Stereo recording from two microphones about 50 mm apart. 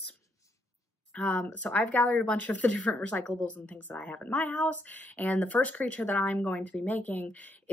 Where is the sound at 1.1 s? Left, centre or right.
Left.